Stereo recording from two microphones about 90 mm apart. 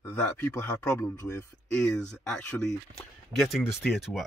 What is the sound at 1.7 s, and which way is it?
Speech, 10° left (ahead or behind).